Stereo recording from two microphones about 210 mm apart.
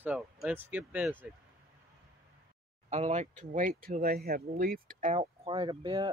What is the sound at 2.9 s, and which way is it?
Speech, 35° right (ahead or behind).